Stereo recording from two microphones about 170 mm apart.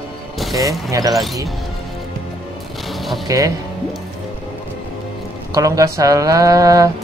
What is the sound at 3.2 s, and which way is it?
Speech, 20° right (ahead or behind).